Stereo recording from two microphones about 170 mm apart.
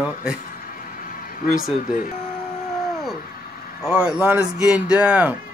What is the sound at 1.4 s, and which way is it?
Speech, 55° left (ahead or behind).